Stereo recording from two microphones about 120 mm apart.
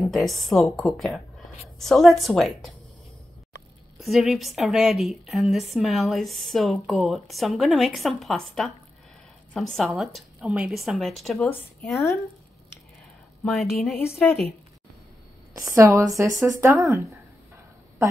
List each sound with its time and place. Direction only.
0.1 s a woman's voice: centre (ahead or behind)
4.0 s a woman's voice: centre (ahead or behind)
13.4 s a woman's voice: centre (ahead or behind)
15.6 s speech: 25° right (ahead or behind)